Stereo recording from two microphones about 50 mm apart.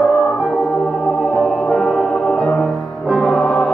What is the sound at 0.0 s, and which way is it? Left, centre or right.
Organ, centre.